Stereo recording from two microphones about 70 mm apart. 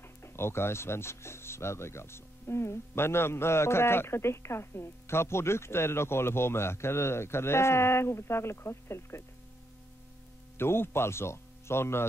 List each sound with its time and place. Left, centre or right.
0.2 s speech: left
10.6 s speech: left